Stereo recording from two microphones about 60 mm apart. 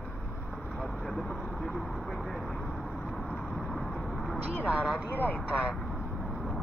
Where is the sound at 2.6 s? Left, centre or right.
Centre.